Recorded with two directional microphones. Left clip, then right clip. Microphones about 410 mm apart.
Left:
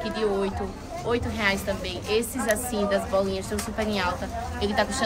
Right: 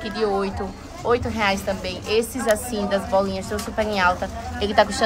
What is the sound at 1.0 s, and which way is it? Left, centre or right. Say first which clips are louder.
A woman's voice: right 5 dB; centre.